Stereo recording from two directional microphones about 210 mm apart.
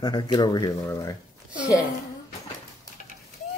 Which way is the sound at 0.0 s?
20° left (ahead or behind).